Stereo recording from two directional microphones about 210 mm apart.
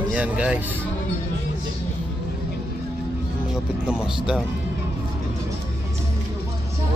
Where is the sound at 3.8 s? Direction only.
5° right (ahead or behind).